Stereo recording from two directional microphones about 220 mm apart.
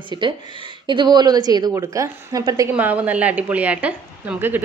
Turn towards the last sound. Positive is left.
turn(degrees=-5)  # may be behind; listen again after turning